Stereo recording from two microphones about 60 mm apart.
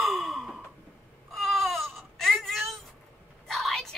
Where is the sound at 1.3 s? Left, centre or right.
Centre.